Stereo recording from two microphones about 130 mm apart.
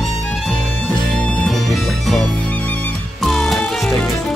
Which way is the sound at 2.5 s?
15° left (ahead or behind).